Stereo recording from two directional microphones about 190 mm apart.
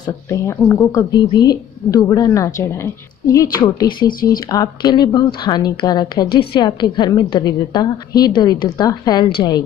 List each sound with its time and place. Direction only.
0.0 s a woman's voice: 15° left (ahead or behind)